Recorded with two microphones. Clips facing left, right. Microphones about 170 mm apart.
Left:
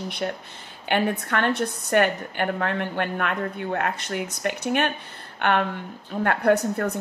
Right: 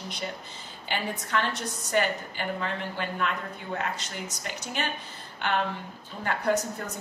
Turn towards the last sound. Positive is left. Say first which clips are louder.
# left 7 dB
turn(degrees=60)  # may be behind; listen again after turning